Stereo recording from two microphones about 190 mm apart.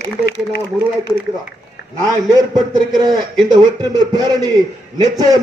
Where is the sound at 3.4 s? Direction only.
20° right (ahead or behind).